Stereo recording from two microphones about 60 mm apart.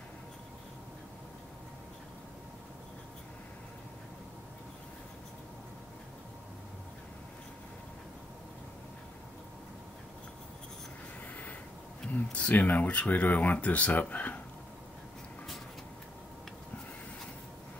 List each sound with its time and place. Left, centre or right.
12.1 s speech: left